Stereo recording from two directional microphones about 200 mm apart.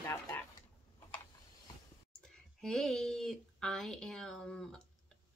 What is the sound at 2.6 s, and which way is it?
Speech, centre (ahead or behind).